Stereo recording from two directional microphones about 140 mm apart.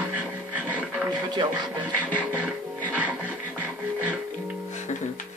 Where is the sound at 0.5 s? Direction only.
10° right (ahead or behind).